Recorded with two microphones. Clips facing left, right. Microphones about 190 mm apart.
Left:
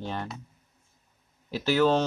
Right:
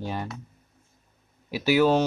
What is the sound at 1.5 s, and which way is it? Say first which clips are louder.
Speech: right 2 dB; 10° right (ahead or behind).